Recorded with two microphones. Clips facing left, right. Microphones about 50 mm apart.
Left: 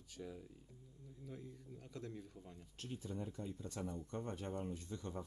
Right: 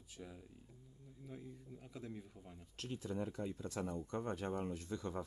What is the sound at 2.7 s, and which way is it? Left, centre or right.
Speech, right.